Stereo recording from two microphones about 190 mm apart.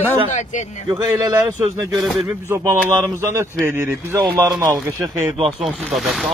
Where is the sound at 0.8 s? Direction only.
20° right (ahead or behind).